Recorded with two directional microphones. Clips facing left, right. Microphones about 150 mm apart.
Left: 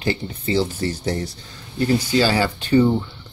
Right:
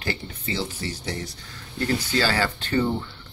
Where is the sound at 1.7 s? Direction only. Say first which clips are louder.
Left 6 dB; 15° left (ahead or behind).